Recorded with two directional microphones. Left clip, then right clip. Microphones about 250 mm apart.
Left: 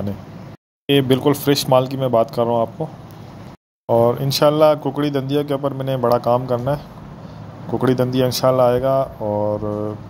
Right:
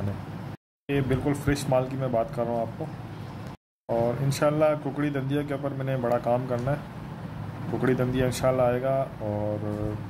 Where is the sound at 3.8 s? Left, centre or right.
Left.